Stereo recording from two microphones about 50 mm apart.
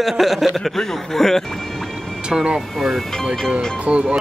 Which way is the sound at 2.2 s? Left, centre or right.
Centre.